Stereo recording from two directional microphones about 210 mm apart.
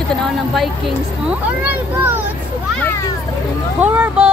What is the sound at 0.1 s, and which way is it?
Speech, centre (ahead or behind).